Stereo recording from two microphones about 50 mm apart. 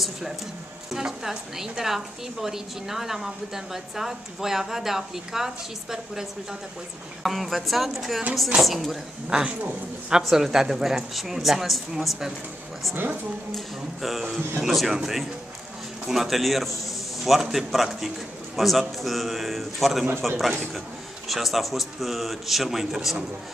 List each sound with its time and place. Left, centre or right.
0.8 s a woman's voice: centre
7.2 s a man's voice: centre
9.3 s speech: centre
10.3 s a woman's voice: centre
12.9 s speech: right
14.6 s a man's voice: centre